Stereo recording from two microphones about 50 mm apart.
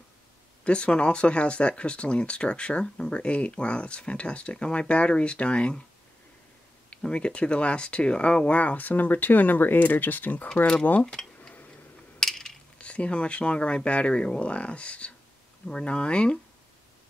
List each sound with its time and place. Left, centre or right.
0.7 s speech: left
6.9 s speech: left
11.1 s a sound: centre
12.7 s speech: left